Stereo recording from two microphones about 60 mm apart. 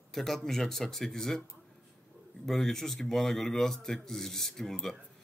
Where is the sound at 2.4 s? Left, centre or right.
Centre.